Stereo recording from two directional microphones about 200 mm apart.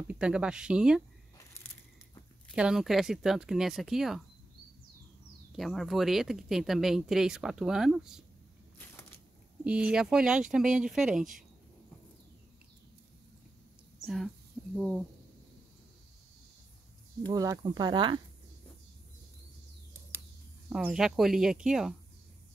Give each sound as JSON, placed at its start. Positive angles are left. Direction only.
{"t": 0.1, "sound": "speech", "side_deg": -5}
{"t": 1.4, "sound": "a sound", "side_deg": 15}
{"t": 2.4, "sound": "speech", "side_deg": -5}
{"t": 5.6, "sound": "speech", "side_deg": 0}
{"t": 9.7, "sound": "speech", "side_deg": -5}
{"t": 14.0, "sound": "speech", "side_deg": 0}
{"t": 17.3, "sound": "speech", "side_deg": -15}
{"t": 20.7, "sound": "speech", "side_deg": -5}